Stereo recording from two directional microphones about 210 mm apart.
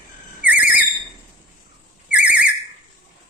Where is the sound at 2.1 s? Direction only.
5° right (ahead or behind).